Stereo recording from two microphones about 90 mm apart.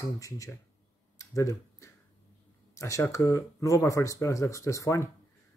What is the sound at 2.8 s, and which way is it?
Speech, 35° left (ahead or behind).